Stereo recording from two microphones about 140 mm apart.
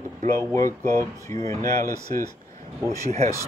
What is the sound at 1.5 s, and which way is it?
Speech, 25° left (ahead or behind).